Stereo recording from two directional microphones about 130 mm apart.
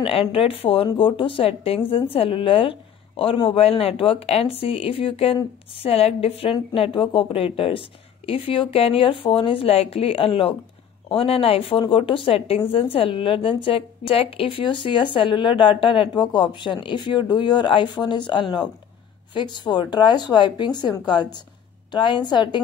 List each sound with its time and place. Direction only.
0.0 s a woman's voice: 45° left (ahead or behind)